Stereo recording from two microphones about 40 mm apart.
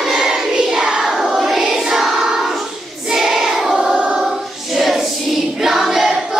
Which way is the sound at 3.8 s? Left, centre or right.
Right.